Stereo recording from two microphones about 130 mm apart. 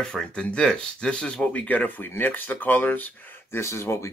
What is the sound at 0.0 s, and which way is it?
Speech, 5° left (ahead or behind).